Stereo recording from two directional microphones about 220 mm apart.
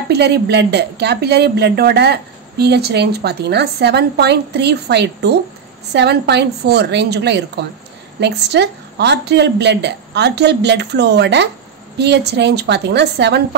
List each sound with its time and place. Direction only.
0.1 s speech: 50° right (ahead or behind)